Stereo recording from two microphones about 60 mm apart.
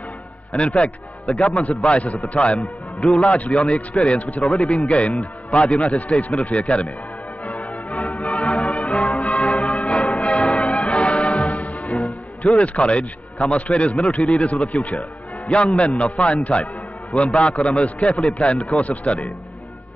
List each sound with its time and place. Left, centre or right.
0.5 s a man's voice: centre
7.4 s music: left
9.4 s change ringing: centre
9.7 s change ringing: left
9.9 s change ringing: centre
10.8 s music: centre
12.5 s a man's voice: left